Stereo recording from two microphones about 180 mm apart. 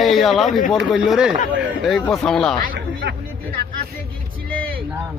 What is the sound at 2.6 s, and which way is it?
Speech, 55° right (ahead or behind).